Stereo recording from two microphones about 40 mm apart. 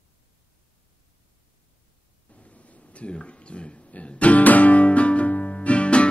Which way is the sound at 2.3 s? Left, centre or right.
Left.